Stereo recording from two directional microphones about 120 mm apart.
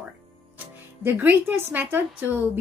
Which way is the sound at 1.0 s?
15° right (ahead or behind).